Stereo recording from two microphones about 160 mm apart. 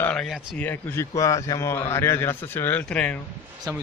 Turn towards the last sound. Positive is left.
turn(degrees=10)  # may be behind; listen again after turning